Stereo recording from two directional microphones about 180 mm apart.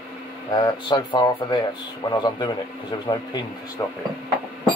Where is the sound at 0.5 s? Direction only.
25° left (ahead or behind).